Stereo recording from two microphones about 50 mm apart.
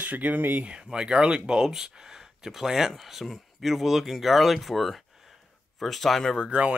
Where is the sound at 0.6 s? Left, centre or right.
Centre.